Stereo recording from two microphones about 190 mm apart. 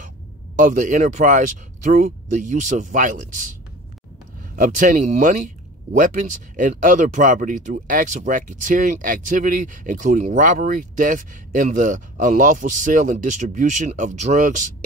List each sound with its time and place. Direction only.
0.6 s speech: 45° right (ahead or behind)
4.6 s speech: 40° right (ahead or behind)